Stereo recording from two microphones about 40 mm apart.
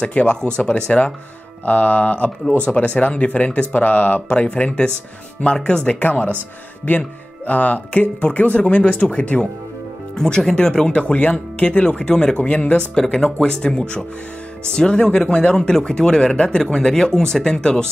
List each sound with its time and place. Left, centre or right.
0.0 s speech: left
1.7 s speech: left
5.9 s speech: left
7.4 s speech: left
10.1 s speech: centre
10.9 s speech: left
12.4 s speech: left
13.1 s speech: centre